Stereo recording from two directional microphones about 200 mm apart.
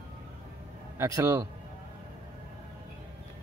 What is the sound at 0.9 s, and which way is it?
Speech, 15° right (ahead or behind).